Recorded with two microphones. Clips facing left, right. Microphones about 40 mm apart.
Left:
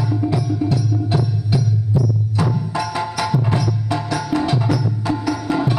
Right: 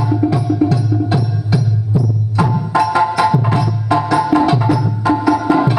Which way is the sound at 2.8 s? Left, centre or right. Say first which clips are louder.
Right 11 dB; right.